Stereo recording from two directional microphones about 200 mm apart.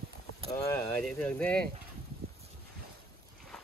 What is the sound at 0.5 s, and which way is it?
Speech, 15° left (ahead or behind).